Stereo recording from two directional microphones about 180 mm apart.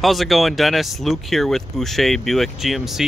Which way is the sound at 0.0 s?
Centre (ahead or behind).